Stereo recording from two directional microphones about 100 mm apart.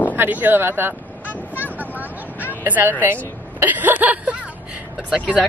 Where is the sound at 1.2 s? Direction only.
15° left (ahead or behind).